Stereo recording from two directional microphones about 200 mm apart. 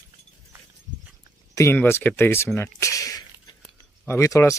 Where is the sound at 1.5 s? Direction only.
10° left (ahead or behind).